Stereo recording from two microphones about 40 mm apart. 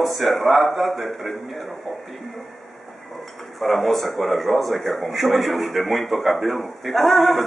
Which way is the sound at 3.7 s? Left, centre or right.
Centre.